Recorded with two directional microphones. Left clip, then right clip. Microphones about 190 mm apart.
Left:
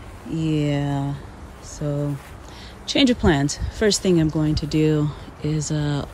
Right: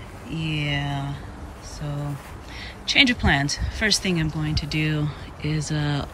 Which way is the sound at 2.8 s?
20° left (ahead or behind).